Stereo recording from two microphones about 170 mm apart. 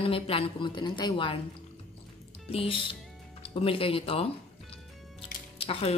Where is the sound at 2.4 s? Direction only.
35° left (ahead or behind).